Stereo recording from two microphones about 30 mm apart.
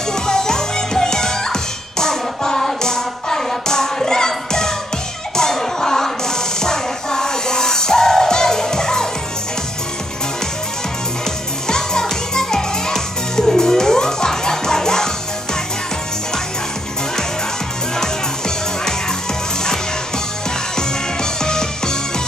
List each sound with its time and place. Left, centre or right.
0.1 s music: centre
11.6 s music: left
20.7 s music: left